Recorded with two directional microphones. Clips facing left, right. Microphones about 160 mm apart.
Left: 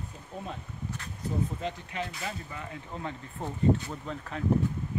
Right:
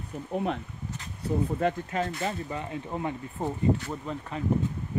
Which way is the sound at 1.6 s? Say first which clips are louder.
Right 8 dB; 50° right (ahead or behind).